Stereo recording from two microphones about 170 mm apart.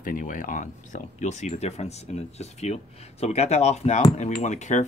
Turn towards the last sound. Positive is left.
turn(degrees=45)  # may be behind; listen again after turning